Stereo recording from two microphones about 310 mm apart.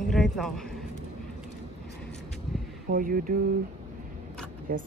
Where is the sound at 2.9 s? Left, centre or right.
Right.